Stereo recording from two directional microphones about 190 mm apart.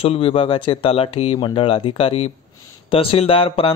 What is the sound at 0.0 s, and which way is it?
Speech, 30° left (ahead or behind).